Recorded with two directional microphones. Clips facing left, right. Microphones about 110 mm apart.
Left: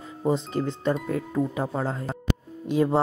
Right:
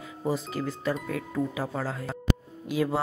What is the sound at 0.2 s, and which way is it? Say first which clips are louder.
Speech: left 4 dB; 30° left (ahead or behind).